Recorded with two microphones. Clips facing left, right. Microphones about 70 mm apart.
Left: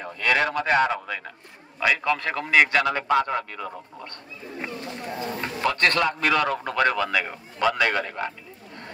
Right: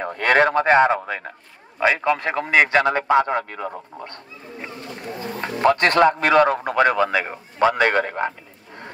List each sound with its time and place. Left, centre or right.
0.0 s a man's voice: right
5.4 s a man's voice: right